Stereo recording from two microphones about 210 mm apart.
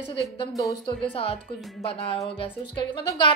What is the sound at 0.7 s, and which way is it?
Speech, 25° left (ahead or behind).